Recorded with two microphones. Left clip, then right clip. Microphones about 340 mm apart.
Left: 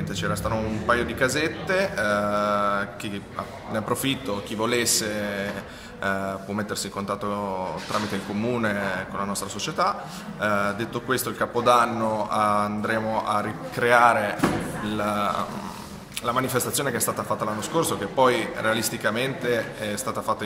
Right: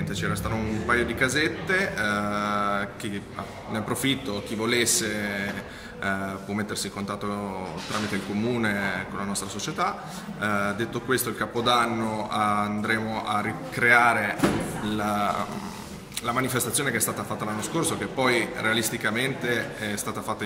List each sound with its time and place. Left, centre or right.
0.2 s a man's voice: centre
9.3 s a man's voice: centre